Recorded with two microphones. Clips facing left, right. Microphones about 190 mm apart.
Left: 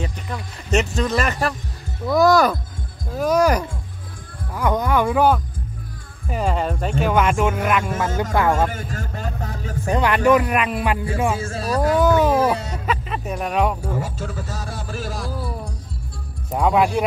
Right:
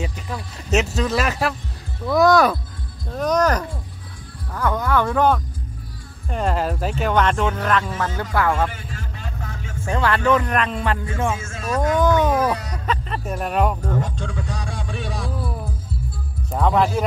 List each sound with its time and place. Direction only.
0.0 s speech: 5° right (ahead or behind); by 7.9 s 10° left (ahead or behind)
8.5 s vehicle: 45° left (ahead or behind)
9.8 s speech: 15° left (ahead or behind)
11.3 s speech: 35° left (ahead or behind)
12.0 s a sound: 10° left (ahead or behind)
12.3 s chicken: 25° left (ahead or behind)
12.8 s music: 5° left (ahead or behind)
16.5 s speech: 5° left (ahead or behind)